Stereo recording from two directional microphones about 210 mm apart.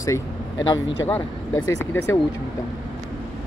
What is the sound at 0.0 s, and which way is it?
Speech, 15° left (ahead or behind).